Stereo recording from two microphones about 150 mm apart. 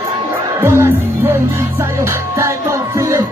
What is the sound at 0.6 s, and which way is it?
Music, 15° right (ahead or behind).